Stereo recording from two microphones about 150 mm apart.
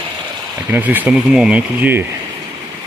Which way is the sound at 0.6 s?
10° right (ahead or behind).